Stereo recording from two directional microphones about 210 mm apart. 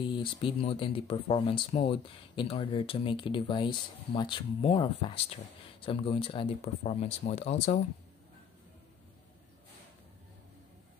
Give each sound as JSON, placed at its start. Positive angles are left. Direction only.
{"t": 0.0, "sound": "speech", "side_deg": 25}